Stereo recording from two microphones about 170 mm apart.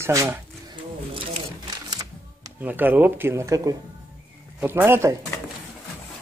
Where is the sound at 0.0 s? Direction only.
15° right (ahead or behind).